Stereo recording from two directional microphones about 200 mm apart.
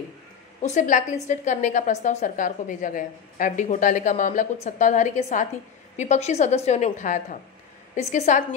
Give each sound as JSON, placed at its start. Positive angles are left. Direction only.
{"t": 0.6, "sound": "a woman's voice", "side_deg": 35}